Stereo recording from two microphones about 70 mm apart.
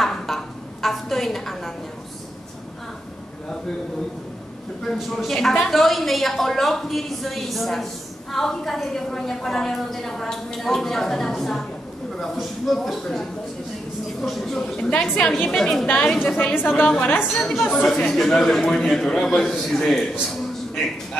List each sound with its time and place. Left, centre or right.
0.0 s a sound: centre
4.9 s a woman's voice: centre
14.8 s a man's voice: centre
16.8 s a man's voice: centre